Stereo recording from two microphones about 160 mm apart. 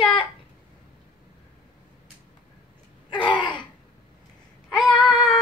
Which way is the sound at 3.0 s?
30° left (ahead or behind).